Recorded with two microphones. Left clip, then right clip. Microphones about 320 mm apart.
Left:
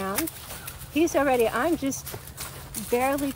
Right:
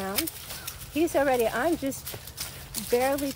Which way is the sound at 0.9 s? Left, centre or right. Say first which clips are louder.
Left 2 dB; left.